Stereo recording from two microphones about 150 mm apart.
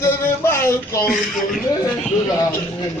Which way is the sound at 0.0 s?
15° left (ahead or behind).